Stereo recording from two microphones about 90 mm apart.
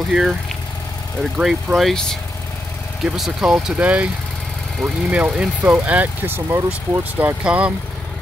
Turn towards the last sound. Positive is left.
turn(degrees=-15)  # may be behind; listen again after turning